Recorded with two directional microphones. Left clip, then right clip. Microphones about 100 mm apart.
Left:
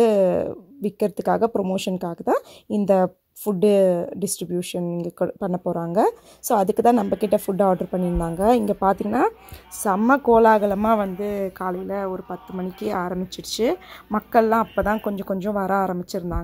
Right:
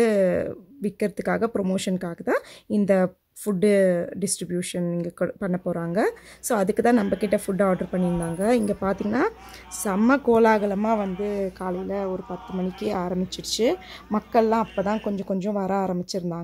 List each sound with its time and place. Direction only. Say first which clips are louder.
0.0 s a sound: left 3 dB; 25° left (ahead or behind)
0.8 s speech: left 4 dB; 25° left (ahead or behind)
5.5 s a woman's voice: left 3 dB; 5° left (ahead or behind)
5.9 s speech: left 6 dB; 25° left (ahead or behind)
8.7 s a woman's voice: left 5 dB; 15° left (ahead or behind)
10.0 s a woman's voice: left 3 dB; 5° left (ahead or behind)
10.7 s a woman's voice: left 4 dB; 25° left (ahead or behind)
14.8 s speech: left 3 dB; 30° left (ahead or behind)